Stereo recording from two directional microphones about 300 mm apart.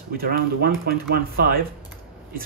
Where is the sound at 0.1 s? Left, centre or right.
Right.